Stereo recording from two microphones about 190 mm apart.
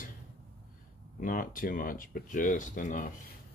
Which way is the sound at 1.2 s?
45° left (ahead or behind).